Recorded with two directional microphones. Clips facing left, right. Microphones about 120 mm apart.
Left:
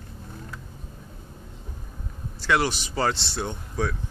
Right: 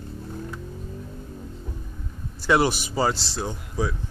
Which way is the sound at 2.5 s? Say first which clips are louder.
Right 3 dB; 10° right (ahead or behind).